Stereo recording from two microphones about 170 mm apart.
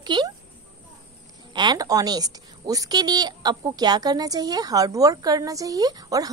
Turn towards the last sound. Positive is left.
turn(degrees=-20)  # may be behind; listen again after turning